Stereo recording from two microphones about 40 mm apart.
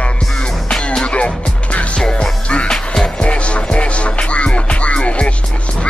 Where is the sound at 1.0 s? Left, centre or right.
Left.